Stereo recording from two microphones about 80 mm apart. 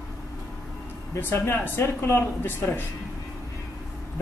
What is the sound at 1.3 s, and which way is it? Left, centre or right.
Speech, left.